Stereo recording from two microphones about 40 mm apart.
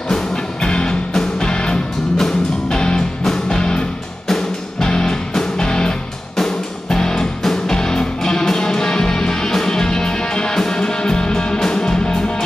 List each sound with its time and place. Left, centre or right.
0.1 s music: centre
2.1 s music: centre
3.3 s music: centre